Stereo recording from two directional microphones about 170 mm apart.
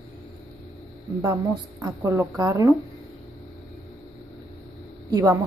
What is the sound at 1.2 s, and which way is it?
A woman's voice, 20° right (ahead or behind).